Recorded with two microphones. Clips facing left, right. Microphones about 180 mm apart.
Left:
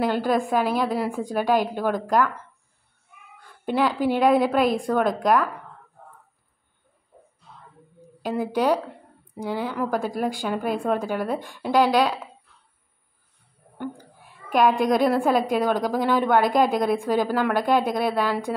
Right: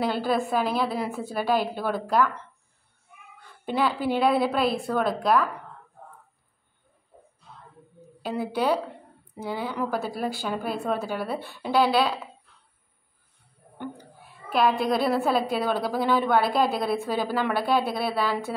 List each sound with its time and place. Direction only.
0.0 s a woman's voice: 10° left (ahead or behind)
3.7 s a woman's voice: 10° left (ahead or behind)
8.2 s a woman's voice: 10° left (ahead or behind)
14.6 s a woman's voice: 45° left (ahead or behind)
14.9 s a woman's voice: 15° left (ahead or behind)